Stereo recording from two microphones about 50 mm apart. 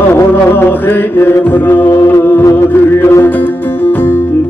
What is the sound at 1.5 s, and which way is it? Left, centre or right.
Music, left.